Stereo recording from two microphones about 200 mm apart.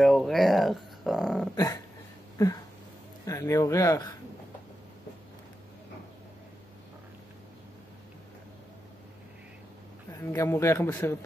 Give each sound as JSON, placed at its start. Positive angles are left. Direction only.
{"t": 0.0, "sound": "speech", "side_deg": 0}
{"t": 1.5, "sound": "speech", "side_deg": 15}
{"t": 2.3, "sound": "a sound", "side_deg": 15}
{"t": 3.3, "sound": "speech", "side_deg": 15}
{"t": 10.3, "sound": "speech", "side_deg": 15}